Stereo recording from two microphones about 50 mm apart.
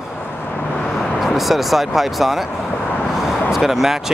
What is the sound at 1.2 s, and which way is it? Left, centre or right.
Speech, centre.